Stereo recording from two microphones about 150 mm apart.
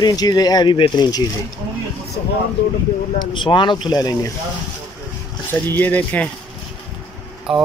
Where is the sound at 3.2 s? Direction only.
30° left (ahead or behind).